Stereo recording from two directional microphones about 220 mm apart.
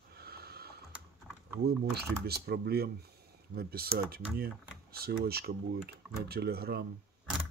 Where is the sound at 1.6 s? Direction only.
45° right (ahead or behind).